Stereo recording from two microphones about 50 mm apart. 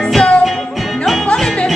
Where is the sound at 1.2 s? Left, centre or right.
Centre.